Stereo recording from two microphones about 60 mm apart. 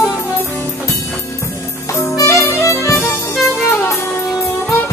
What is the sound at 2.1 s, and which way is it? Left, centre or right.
Music, left.